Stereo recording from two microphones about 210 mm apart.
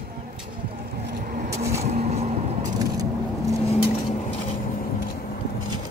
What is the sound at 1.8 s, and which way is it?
Vehicle, 30° right (ahead or behind).